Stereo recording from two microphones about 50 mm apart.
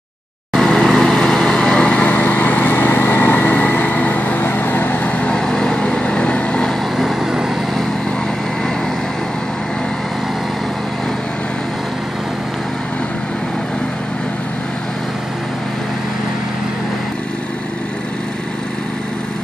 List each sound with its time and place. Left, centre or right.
0.6 s vehicle: centre
2.0 s lawn mower: left
2.7 s vehicle: left
5.3 s vehicle: centre
7.0 s vehicle: centre